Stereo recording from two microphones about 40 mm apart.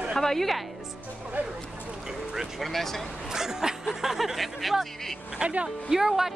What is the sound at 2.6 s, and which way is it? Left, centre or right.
Speech, centre.